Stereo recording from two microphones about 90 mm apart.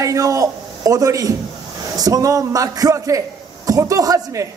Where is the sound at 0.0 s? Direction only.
40° right (ahead or behind).